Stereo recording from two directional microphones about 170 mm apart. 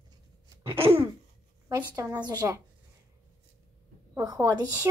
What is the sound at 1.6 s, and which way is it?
Speech, 20° right (ahead or behind).